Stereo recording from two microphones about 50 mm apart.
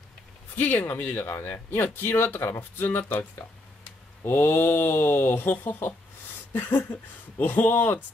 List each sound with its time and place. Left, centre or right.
0.6 s speech: left
4.6 s speech: left